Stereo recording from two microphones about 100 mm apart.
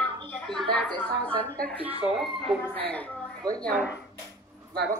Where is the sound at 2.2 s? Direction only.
Centre (ahead or behind).